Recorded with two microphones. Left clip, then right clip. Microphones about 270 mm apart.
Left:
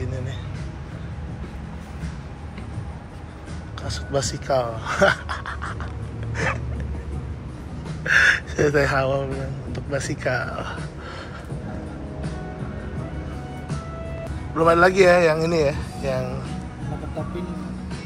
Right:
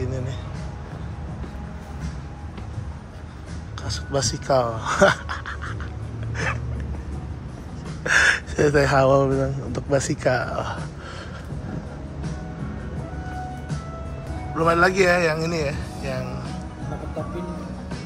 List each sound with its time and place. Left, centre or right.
3.8 s speech: centre
5.5 s a sound: centre
6.3 s dog: centre
8.0 s speech: centre
14.6 s speech: centre